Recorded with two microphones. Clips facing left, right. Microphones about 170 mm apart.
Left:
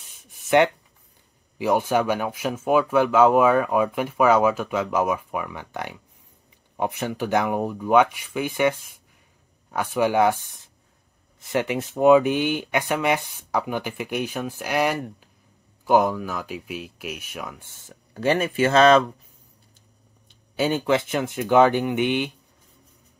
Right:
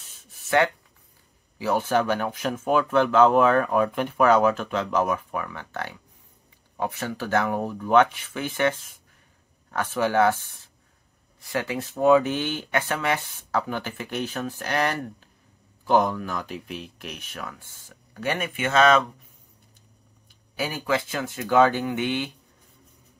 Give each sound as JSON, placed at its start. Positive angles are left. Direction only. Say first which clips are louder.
{"t": 0.0, "sound": "a sound", "louder": "left 1 dB", "side_deg": 15}
{"t": 1.6, "sound": "speech", "louder": "left 2 dB", "side_deg": 15}
{"t": 20.2, "sound": "speech", "louder": "left 7 dB", "side_deg": 25}